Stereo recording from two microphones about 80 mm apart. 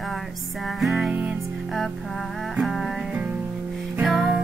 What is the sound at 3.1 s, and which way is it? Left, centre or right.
Music, centre.